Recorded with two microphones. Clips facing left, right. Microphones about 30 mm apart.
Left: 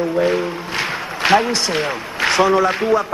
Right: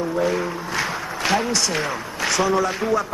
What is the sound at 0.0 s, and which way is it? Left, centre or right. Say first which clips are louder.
A man's voice: left 4 dB; left.